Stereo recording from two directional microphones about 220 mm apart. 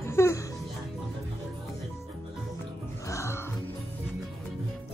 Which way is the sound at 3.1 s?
10° left (ahead or behind).